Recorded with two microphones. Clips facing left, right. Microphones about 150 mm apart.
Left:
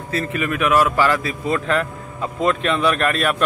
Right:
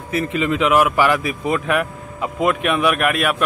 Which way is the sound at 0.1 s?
15° right (ahead or behind).